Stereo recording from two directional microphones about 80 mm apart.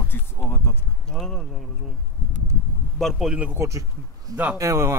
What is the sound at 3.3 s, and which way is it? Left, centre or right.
Speech, centre.